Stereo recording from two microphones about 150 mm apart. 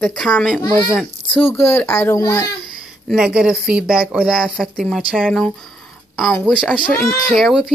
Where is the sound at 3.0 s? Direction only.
5° right (ahead or behind).